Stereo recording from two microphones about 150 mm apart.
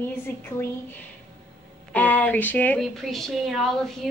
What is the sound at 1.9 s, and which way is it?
A woman's voice, 10° left (ahead or behind).